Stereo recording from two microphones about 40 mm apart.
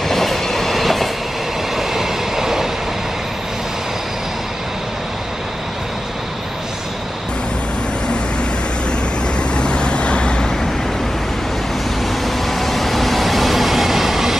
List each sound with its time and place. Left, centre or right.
0.1 s train: centre
1.8 s train: centre
9.6 s vehicle: left
12.4 s train: centre